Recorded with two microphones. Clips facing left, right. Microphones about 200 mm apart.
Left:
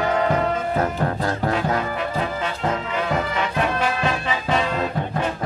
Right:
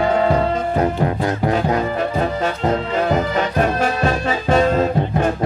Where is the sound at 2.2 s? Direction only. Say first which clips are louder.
Right 5 dB; 40° right (ahead or behind).